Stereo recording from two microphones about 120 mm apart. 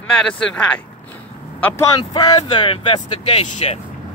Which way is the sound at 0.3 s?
10° left (ahead or behind).